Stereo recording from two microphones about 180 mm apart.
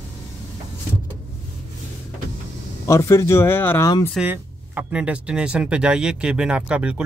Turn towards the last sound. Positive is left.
turn(degrees=-5)  # may be behind; listen again after turning